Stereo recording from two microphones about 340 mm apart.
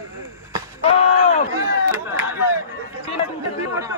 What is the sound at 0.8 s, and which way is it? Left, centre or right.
Speech, left.